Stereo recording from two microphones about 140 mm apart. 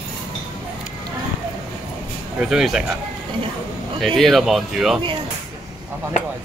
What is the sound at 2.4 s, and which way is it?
Speech, 5° right (ahead or behind).